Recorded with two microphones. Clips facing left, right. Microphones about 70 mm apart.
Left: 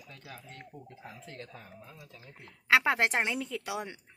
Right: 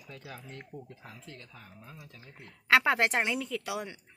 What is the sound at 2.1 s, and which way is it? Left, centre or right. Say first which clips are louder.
Speech: even; centre.